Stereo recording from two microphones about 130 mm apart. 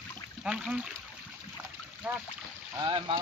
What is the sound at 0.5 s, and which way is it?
Speech, 5° right (ahead or behind).